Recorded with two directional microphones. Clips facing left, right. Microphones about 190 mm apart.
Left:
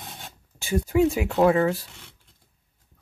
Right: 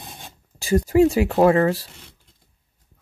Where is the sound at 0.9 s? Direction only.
35° right (ahead or behind).